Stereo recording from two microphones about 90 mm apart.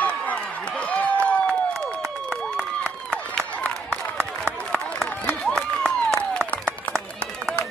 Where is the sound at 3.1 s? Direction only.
15° left (ahead or behind).